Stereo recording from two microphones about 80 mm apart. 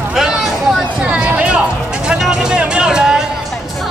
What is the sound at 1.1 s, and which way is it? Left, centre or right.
Music, centre.